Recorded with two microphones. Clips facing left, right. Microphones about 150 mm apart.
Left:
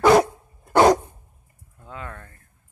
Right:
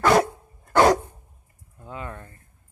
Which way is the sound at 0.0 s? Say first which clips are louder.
Left 3 dB; 15° left (ahead or behind).